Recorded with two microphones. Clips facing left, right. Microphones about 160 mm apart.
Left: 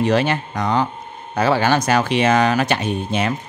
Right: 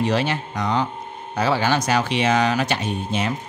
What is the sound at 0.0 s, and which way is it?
Speech, 55° left (ahead or behind).